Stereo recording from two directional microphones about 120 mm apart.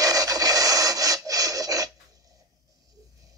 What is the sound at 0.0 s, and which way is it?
Rub, 30° right (ahead or behind).